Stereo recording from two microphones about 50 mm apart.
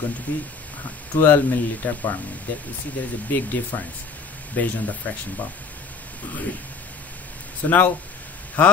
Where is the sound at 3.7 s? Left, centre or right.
Left.